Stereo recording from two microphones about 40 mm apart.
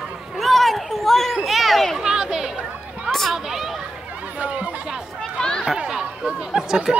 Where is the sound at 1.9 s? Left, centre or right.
Centre.